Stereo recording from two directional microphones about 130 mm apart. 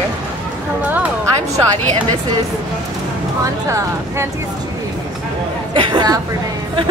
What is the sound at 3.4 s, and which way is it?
Speech, 25° right (ahead or behind).